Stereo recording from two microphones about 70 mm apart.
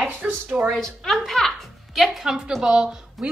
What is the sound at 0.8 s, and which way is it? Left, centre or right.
Speech, centre.